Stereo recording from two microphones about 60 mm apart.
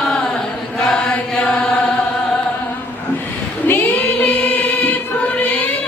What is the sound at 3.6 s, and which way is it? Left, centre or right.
Choir, left.